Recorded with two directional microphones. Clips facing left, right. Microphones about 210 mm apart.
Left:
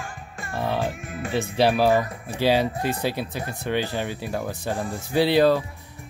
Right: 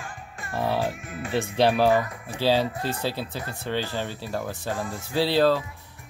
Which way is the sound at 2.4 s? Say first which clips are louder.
Left 2 dB; 15° left (ahead or behind).